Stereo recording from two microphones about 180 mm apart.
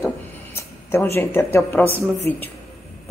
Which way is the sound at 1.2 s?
10° left (ahead or behind).